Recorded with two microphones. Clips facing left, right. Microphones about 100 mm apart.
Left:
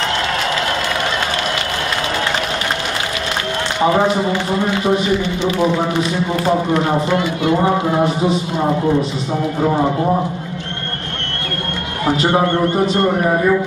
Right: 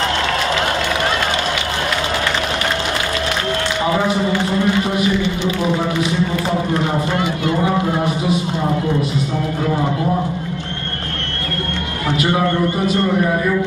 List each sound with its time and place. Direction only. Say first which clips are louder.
3.8 s speech: left 5 dB; 30° left (ahead or behind)
7.6 s speech: left 2 dB; 30° left (ahead or behind)
12.2 s speech: left 1 dB; 30° left (ahead or behind)